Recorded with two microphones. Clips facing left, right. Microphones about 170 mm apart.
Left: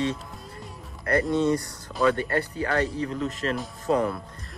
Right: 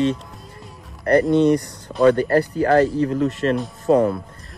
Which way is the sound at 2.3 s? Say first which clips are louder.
Right 10 dB; 35° right (ahead or behind).